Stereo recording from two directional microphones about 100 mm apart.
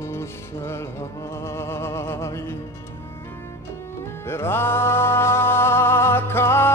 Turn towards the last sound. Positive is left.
turn(degrees=25)  # may be behind; listen again after turning